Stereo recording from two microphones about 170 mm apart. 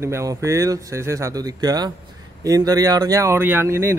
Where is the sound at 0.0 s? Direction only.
15° right (ahead or behind).